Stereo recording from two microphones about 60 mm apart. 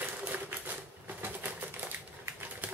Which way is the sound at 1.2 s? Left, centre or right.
Right.